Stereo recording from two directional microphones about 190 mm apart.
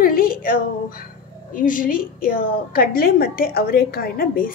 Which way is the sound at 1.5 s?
45° left (ahead or behind).